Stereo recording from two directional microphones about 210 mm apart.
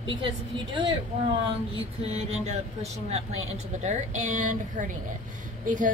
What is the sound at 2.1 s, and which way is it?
A woman's voice, 30° right (ahead or behind).